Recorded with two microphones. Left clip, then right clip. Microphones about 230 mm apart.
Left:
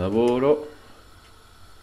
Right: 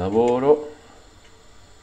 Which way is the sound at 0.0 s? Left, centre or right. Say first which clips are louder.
Right 2 dB; centre.